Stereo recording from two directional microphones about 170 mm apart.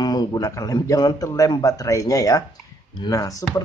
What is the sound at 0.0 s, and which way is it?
Speech, 25° left (ahead or behind).